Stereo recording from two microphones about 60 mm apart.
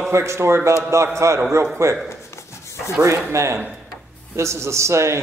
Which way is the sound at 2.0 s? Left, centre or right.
Left.